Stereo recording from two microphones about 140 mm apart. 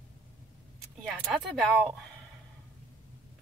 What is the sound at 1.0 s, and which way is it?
Speech, 5° right (ahead or behind).